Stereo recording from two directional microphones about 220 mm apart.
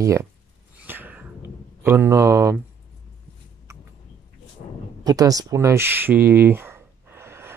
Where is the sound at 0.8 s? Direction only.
10° right (ahead or behind).